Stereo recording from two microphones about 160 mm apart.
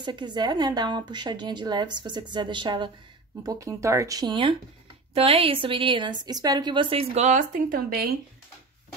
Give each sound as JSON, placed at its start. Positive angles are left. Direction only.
{"t": 0.0, "sound": "a woman's voice", "side_deg": -30}
{"t": 3.4, "sound": "a woman's voice", "side_deg": -20}